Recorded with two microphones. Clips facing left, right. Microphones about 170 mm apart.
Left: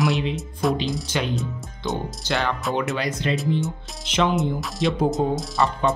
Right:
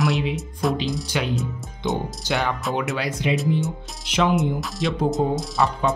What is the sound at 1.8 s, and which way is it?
Speech, 20° right (ahead or behind).